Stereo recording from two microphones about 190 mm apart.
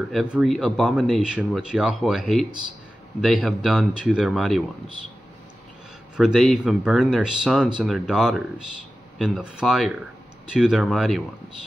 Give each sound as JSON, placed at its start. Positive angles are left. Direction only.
{"t": 0.0, "sound": "speech", "side_deg": 0}
{"t": 6.1, "sound": "speech", "side_deg": -5}